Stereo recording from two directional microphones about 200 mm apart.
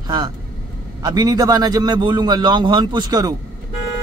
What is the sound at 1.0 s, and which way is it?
A man's voice, 20° right (ahead or behind).